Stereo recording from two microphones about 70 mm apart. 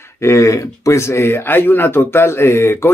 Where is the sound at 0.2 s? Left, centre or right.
Left.